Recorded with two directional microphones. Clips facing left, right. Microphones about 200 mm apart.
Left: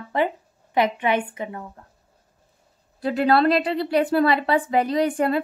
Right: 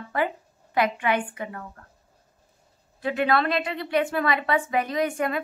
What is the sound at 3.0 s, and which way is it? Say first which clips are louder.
A woman's voice: left 4 dB; 35° left (ahead or behind).